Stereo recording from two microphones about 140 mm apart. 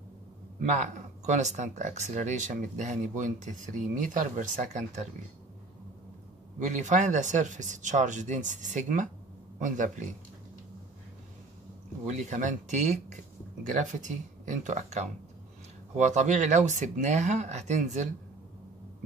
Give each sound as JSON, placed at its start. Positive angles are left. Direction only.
{"t": 0.7, "sound": "speech", "side_deg": -60}
{"t": 6.6, "sound": "speech", "side_deg": -60}
{"t": 12.1, "sound": "speech", "side_deg": -60}